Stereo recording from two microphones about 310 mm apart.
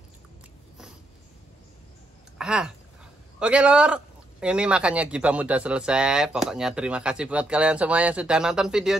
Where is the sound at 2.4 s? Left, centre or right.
Centre.